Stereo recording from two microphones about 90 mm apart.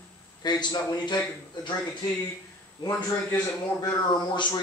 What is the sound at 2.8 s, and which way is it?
Speech, 35° left (ahead or behind).